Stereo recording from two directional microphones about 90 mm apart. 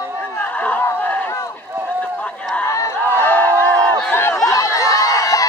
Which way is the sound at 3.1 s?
20° left (ahead or behind).